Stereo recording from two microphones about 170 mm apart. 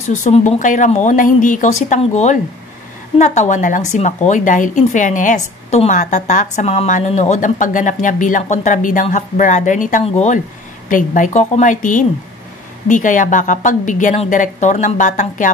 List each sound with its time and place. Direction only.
0.0 s speech: 45° left (ahead or behind)